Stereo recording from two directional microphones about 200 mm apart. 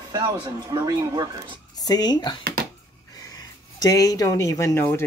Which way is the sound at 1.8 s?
20° left (ahead or behind).